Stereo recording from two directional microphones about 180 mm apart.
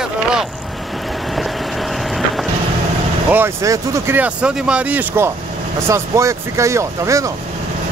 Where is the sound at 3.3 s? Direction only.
15° right (ahead or behind).